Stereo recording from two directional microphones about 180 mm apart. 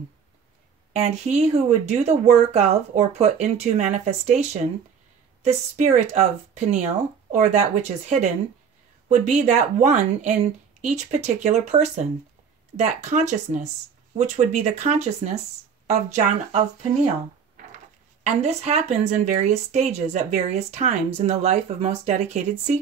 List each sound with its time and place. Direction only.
0.9 s a woman's voice: 40° right (ahead or behind)
18.2 s a woman's voice: 40° right (ahead or behind)